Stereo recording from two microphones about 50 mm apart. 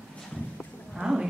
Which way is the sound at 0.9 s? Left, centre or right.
Centre.